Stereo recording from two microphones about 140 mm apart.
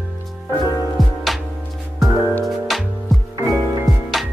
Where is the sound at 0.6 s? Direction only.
25° left (ahead or behind).